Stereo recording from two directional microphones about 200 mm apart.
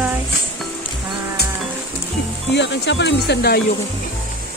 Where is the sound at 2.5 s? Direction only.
60° left (ahead or behind).